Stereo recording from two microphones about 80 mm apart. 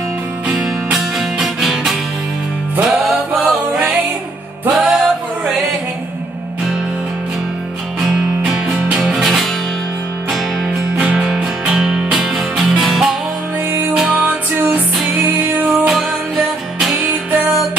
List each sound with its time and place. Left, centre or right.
0.5 s music: centre
8.0 s music: centre
10.7 s music: centre
14.2 s music: centre
15.9 s music: centre
17.0 s music: centre